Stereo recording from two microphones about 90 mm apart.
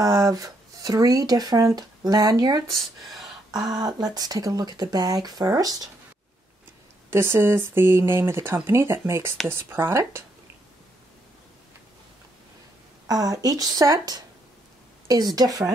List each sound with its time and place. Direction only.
0.0 s speech: 40° right (ahead or behind)
3.1 s a sound: centre (ahead or behind)
3.7 s speech: 45° right (ahead or behind)
7.1 s speech: 30° right (ahead or behind)
13.1 s speech: 45° right (ahead or behind)